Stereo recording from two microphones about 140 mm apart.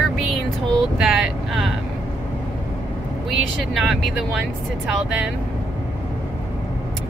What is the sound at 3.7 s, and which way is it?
Speech, centre (ahead or behind).